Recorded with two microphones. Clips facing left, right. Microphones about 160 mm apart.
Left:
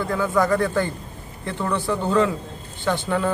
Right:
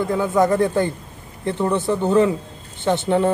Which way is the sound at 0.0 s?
20° right (ahead or behind).